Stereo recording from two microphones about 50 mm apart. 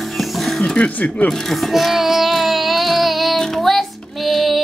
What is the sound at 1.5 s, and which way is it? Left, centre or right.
Child singing, centre.